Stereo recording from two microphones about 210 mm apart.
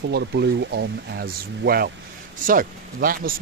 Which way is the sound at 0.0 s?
55° right (ahead or behind).